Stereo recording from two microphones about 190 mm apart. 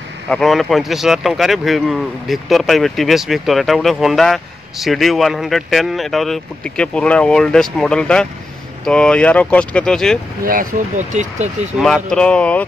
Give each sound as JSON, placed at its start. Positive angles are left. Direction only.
{"t": 0.3, "sound": "speech", "side_deg": 0}
{"t": 10.4, "sound": "speech", "side_deg": -45}
{"t": 11.8, "sound": "speech", "side_deg": 0}